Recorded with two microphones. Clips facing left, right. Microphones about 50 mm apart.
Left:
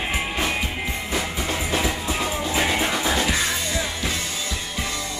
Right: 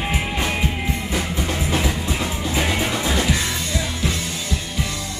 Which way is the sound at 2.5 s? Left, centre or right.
Centre.